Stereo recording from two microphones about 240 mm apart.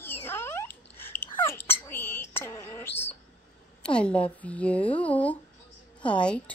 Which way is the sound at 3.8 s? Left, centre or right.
Centre.